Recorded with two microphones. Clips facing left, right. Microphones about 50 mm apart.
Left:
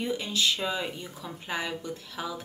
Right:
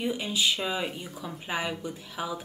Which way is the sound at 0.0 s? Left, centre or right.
Centre.